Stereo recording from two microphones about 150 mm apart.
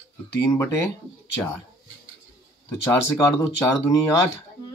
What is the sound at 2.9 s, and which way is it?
Speech, 20° left (ahead or behind).